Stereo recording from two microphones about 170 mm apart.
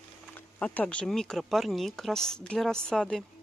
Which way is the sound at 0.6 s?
10° left (ahead or behind).